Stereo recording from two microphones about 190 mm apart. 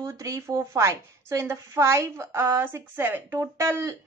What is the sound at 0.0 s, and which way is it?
A woman's voice, 15° right (ahead or behind).